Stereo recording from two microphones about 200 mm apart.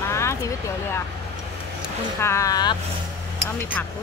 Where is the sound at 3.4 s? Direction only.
10° left (ahead or behind).